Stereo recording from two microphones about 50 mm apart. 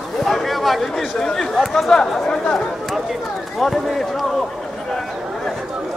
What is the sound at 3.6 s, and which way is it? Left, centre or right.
Speech, centre.